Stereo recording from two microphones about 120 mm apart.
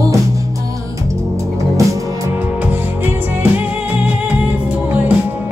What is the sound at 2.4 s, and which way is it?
Music, 15° right (ahead or behind).